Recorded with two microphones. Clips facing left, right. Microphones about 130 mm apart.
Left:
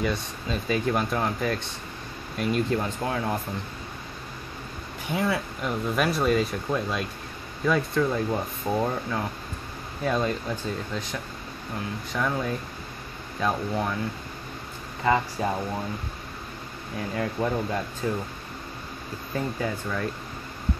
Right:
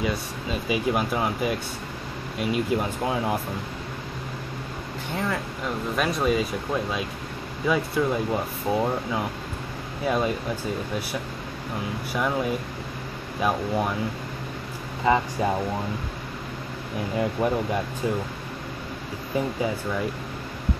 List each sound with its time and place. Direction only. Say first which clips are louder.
0.0 s speech: right 1 dB; 5° right (ahead or behind)
5.1 s speech: left 2 dB; 10° left (ahead or behind); by 13.9 s 15° right (ahead or behind)
15.4 s speech: right 3 dB; 20° right (ahead or behind)
17.2 s speech: right 3 dB; 15° right (ahead or behind)
19.3 s speech: right 3 dB; 10° right (ahead or behind)